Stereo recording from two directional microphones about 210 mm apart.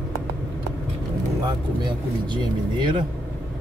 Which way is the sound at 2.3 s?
20° right (ahead or behind).